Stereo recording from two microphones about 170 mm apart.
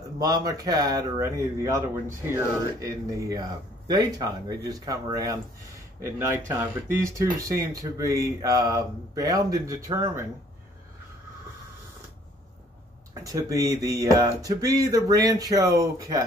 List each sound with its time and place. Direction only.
0.2 s speech: 20° right (ahead or behind)
13.1 s speech: 20° right (ahead or behind)